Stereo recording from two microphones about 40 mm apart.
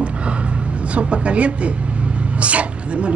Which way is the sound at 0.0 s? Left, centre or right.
Right.